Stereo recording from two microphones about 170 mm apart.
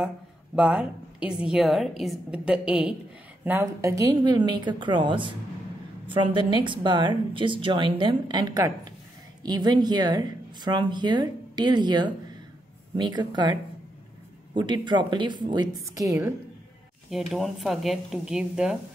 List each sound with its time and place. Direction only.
0.6 s a woman's voice: 5° right (ahead or behind)
17.1 s a woman's voice: centre (ahead or behind)